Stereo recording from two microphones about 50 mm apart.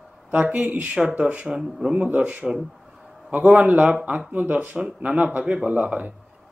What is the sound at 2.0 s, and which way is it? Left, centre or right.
A man's voice, right.